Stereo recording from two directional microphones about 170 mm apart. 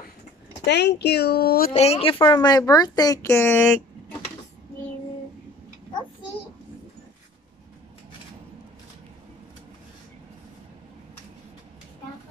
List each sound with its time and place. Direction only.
0.7 s speech: 80° left
1.7 s speech: 40° left (ahead or behind); by 3.6 s 15° left (ahead or behind)